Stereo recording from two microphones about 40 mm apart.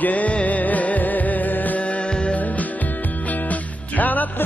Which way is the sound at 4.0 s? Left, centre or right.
Left.